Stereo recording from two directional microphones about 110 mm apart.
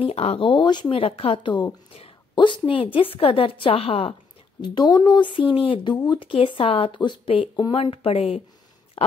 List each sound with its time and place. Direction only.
0.0 s speech: 70° left (ahead or behind)
0.5 s speech: 45° left (ahead or behind)
0.8 s a woman's voice: 60° left (ahead or behind)
4.6 s speech: 45° left (ahead or behind)
5.9 s speech: 45° left (ahead or behind)
7.7 s a woman's voice: 60° left (ahead or behind)